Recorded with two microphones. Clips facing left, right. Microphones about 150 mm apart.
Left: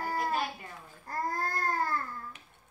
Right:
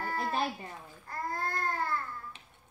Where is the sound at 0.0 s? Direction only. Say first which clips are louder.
Left 2 dB; 40° left (ahead or behind).